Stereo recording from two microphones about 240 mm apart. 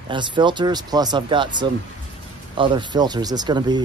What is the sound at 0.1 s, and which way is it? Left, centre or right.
Speech, centre.